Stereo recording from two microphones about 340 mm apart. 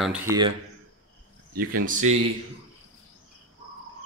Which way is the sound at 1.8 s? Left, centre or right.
Right.